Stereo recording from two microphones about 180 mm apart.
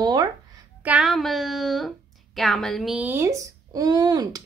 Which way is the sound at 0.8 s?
5° right (ahead or behind).